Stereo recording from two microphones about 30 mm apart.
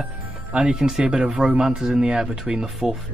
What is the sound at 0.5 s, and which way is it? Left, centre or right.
Speech, right.